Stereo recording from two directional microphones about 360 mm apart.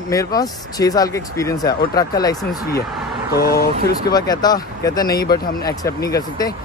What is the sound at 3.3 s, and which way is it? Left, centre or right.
Speech, left.